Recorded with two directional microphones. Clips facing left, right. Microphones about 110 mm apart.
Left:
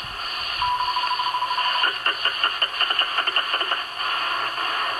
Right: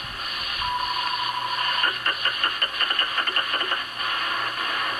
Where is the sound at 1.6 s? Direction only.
40° left (ahead or behind).